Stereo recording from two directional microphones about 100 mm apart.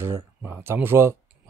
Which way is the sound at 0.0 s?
25° right (ahead or behind).